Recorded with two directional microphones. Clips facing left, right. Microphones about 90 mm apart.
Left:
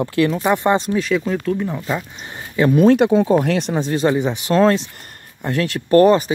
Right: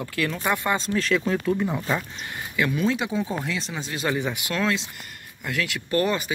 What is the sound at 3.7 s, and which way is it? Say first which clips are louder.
Speech: left 12 dB; 40° left (ahead or behind).